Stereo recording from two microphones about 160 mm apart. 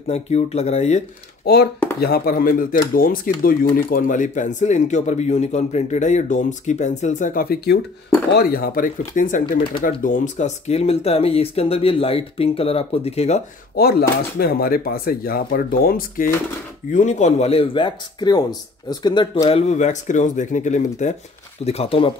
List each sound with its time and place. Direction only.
0.1 s speech: 40° left (ahead or behind)
1.4 s speech: 85° left
2.0 s speech: 75° left (ahead or behind); by 13.4 s 40° left (ahead or behind)
13.7 s speech: 75° left (ahead or behind)
16.9 s speech: 50° left (ahead or behind)
21.6 s speech: 40° left (ahead or behind)